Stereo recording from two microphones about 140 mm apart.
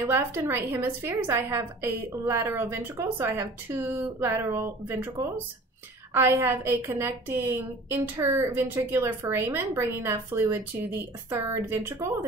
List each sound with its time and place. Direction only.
0.0 s a woman's voice: 15° right (ahead or behind)